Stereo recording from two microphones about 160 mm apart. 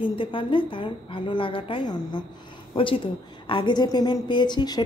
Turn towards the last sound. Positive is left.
turn(degrees=30)  # may be behind; listen again after turning